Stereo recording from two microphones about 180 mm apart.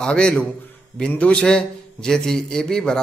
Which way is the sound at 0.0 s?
5° left (ahead or behind).